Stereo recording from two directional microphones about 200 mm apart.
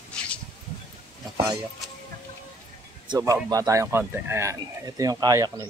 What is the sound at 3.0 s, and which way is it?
Speech, 15° right (ahead or behind).